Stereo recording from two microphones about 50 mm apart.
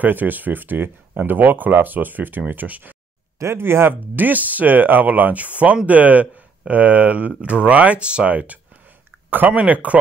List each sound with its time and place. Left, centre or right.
0.0 s speech: right
3.5 s speech: right
4.1 s speech: right